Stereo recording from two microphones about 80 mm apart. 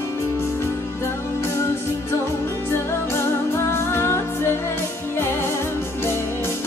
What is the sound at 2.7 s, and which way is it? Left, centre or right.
Music, left.